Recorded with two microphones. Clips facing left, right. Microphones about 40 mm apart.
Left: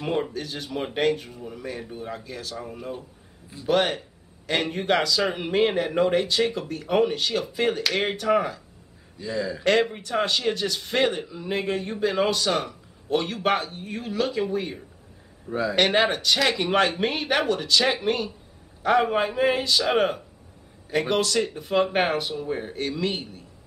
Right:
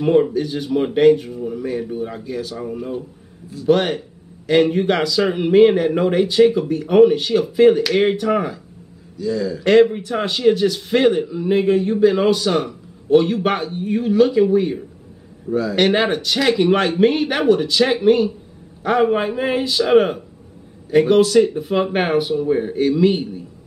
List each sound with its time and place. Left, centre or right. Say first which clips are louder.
0.0 s a man's voice: right 11 dB; centre
9.2 s a man's voice: right 7 dB; left
9.7 s a man's voice: right 9 dB; centre